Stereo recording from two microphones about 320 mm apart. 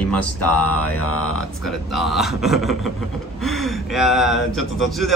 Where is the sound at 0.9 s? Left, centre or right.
Left.